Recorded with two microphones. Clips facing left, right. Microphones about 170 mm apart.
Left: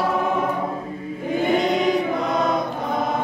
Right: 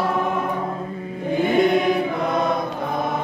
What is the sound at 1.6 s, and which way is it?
Choir, 55° right (ahead or behind).